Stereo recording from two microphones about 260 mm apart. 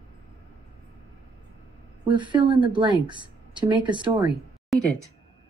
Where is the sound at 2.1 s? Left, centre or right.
Centre.